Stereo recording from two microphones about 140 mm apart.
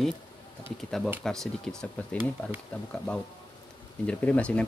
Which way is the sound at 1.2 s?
5° left (ahead or behind).